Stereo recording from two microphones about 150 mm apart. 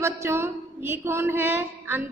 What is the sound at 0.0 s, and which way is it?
A woman's voice, 15° right (ahead or behind).